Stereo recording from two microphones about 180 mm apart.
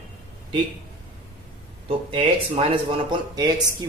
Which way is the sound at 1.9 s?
30° right (ahead or behind).